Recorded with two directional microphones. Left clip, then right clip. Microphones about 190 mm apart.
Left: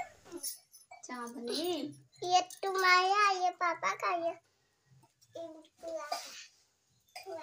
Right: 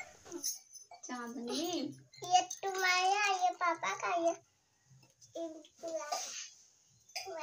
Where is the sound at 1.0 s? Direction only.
15° left (ahead or behind).